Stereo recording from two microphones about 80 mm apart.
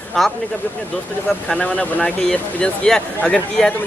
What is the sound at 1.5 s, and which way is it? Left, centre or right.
Speech, centre.